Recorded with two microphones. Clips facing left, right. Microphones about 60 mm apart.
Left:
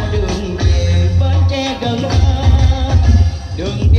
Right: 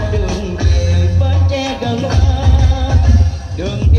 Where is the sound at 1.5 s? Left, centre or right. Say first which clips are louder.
Even; right.